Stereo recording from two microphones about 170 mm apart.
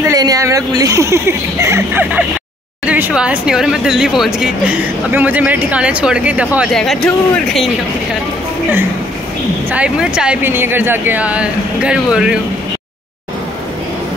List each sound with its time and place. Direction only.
0.1 s speech: 20° right (ahead or behind); by 7.1 s 5° left (ahead or behind)
9.7 s speech: 5° right (ahead or behind)